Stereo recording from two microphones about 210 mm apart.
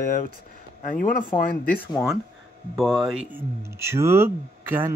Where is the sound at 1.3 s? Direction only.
25° left (ahead or behind).